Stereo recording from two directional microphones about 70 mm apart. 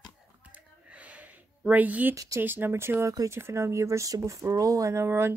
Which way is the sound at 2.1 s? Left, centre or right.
Right.